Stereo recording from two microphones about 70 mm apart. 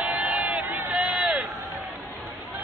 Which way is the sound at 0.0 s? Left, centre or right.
Right.